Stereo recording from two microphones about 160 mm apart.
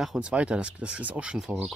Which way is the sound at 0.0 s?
5° right (ahead or behind).